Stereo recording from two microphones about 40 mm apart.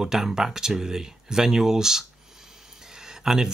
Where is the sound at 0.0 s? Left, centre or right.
Centre.